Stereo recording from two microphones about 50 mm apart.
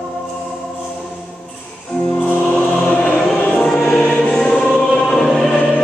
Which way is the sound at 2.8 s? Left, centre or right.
Left.